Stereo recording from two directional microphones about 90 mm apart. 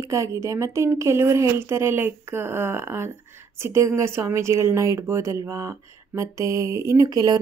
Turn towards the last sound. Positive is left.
turn(degrees=-40)  # may be behind; listen again after turning